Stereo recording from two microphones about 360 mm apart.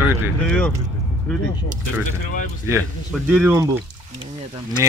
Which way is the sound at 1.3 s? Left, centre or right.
Centre.